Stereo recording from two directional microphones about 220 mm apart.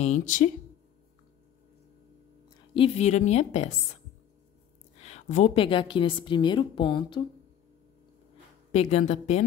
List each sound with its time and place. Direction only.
0.0 s a woman's voice: 35° left (ahead or behind)
2.7 s a woman's voice: 25° left (ahead or behind)
4.9 s a woman's voice: 30° left (ahead or behind)
8.7 s a woman's voice: 30° left (ahead or behind)